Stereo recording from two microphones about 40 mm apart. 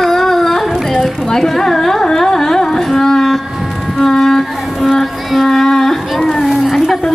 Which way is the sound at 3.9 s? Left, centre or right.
Centre.